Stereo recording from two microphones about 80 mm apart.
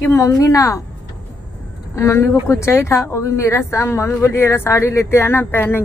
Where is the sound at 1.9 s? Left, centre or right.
Left.